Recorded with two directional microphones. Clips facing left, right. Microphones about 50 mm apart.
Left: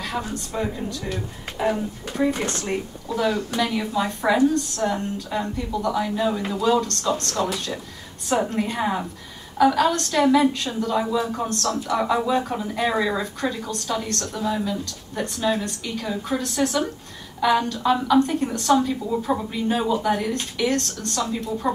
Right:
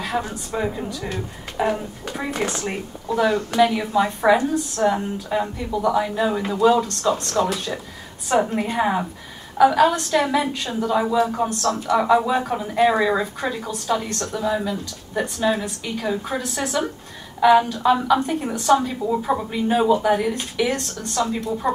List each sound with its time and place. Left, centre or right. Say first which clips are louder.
0.0 s speech: right 3 dB; centre
1.6 s a woman's voice: right 1 dB; centre